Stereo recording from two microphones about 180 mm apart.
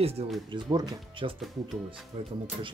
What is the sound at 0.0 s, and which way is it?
Speech, 35° right (ahead or behind).